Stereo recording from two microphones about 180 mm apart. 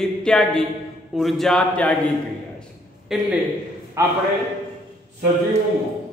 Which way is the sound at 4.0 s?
15° right (ahead or behind).